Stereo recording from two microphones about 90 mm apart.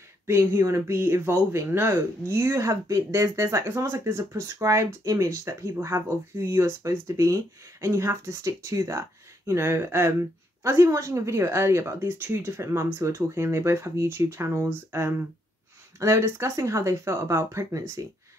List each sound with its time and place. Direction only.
0.3 s speech: 25° right (ahead or behind)